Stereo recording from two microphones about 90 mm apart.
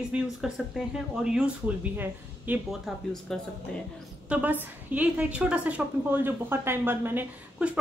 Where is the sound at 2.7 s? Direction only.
5° left (ahead or behind).